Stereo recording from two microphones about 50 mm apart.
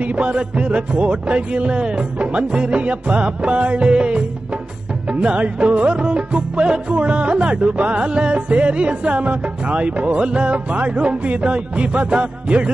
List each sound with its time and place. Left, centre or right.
0.0 s music: right